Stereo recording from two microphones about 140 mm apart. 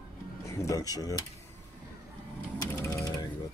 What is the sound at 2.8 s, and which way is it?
Ratchet, 25° left (ahead or behind).